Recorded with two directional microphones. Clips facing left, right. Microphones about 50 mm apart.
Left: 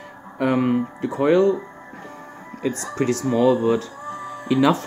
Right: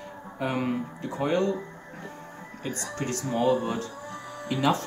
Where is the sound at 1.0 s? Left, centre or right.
Left.